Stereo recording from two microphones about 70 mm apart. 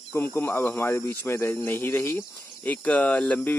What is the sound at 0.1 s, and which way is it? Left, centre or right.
Speech, left.